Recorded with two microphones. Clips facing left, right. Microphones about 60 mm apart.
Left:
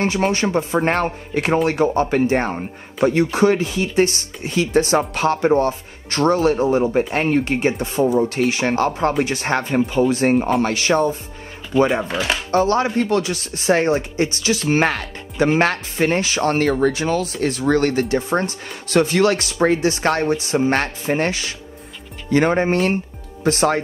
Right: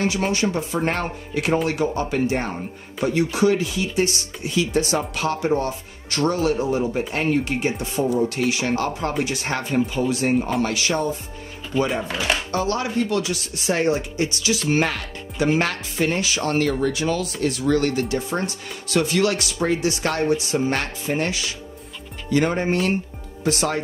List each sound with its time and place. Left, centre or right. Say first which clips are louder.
0.0 s speech: left 3 dB; left
12.4 s speech: left 6 dB; left